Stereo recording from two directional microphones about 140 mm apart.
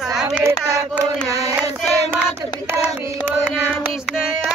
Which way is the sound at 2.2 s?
15° right (ahead or behind).